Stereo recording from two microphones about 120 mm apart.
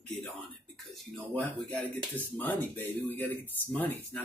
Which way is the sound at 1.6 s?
10° left (ahead or behind).